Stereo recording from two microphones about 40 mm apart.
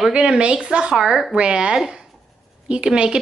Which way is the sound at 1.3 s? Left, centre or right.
Right.